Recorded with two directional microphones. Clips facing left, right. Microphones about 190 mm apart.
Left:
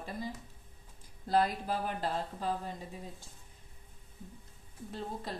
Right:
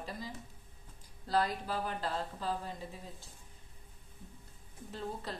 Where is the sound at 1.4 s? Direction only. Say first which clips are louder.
Left 2 dB; 45° left (ahead or behind).